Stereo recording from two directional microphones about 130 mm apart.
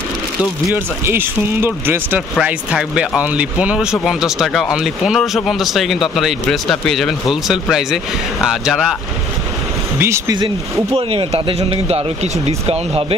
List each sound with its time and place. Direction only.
0.7 s speech: 20° right (ahead or behind); by 8.9 s 5° right (ahead or behind)
9.9 s speech: 20° right (ahead or behind)
11.0 s speech: 45° right (ahead or behind)